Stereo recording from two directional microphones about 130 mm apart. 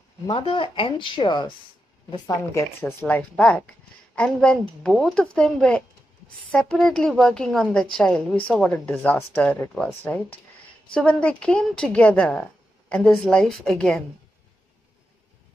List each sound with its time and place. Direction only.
0.3 s speech: 45° left (ahead or behind)
2.2 s speech: 20° left (ahead or behind); by 14.0 s 5° left (ahead or behind)